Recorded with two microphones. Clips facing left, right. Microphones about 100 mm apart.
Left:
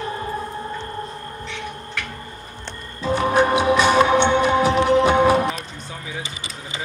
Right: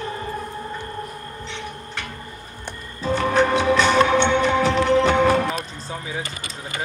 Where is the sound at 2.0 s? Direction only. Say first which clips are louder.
Left 2 dB; 25° right (ahead or behind).